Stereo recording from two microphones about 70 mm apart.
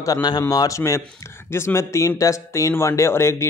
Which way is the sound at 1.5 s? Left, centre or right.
Left.